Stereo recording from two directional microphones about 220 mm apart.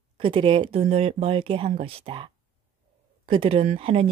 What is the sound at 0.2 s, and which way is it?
Speech, 25° right (ahead or behind).